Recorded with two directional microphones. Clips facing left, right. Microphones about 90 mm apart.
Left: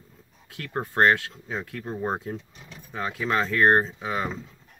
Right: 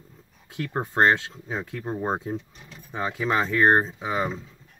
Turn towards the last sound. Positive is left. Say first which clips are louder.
# right 2 dB
turn(degrees=-20)  # may be behind; listen again after turning